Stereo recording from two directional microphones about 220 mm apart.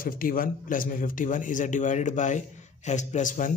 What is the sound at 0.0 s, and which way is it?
Speech, 40° left (ahead or behind).